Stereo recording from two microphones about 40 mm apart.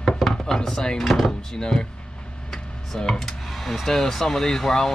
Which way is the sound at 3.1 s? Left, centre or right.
Centre.